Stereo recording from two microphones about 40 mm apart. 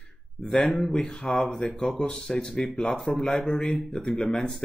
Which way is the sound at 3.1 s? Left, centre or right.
Centre.